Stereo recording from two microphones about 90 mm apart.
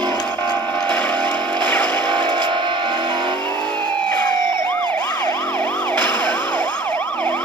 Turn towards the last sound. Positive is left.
turn(degrees=20)  # may be behind; listen again after turning